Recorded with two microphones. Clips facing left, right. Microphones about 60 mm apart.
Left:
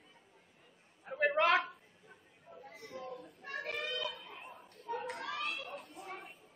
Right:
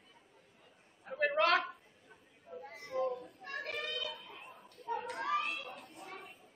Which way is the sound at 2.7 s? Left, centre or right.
Right.